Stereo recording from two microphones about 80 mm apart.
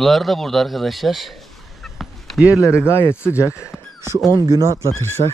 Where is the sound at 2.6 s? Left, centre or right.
Left.